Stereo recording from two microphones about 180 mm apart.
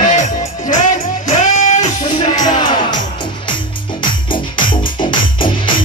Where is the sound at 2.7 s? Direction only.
25° left (ahead or behind).